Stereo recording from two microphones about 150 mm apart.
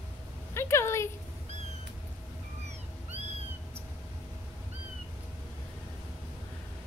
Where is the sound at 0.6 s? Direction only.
20° left (ahead or behind).